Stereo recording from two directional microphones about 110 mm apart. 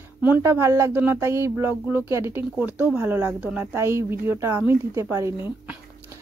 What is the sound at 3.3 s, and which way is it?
Speech, 10° right (ahead or behind).